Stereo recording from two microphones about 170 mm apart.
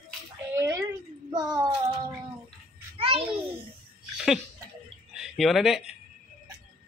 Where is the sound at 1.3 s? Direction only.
25° right (ahead or behind).